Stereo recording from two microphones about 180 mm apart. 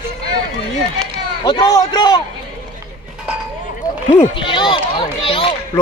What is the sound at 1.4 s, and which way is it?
Speech, 20° left (ahead or behind).